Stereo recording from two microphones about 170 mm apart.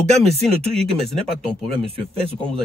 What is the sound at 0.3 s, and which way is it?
Speech, 35° right (ahead or behind).